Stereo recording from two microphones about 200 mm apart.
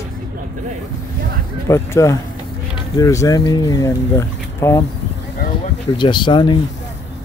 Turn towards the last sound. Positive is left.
turn(degrees=20)  # may be behind; listen again after turning